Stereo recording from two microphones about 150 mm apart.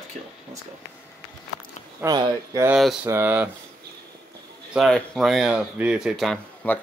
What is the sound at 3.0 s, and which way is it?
Speech, 15° right (ahead or behind).